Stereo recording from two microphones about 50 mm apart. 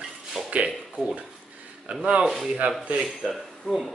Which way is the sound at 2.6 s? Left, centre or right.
Right.